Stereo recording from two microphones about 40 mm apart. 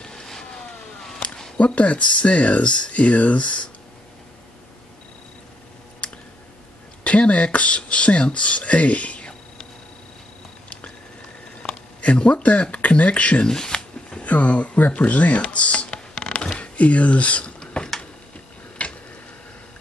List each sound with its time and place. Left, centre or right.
0.0 s vehicle: centre
1.6 s speech: left
7.1 s speech: left
11.6 s a sound: centre
12.0 s speech: left
13.5 s shuffling cards: centre
14.2 s speech: left
17.8 s a sound: left
18.8 s a sound: left